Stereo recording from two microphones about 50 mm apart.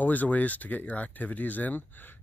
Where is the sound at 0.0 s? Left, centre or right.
Left.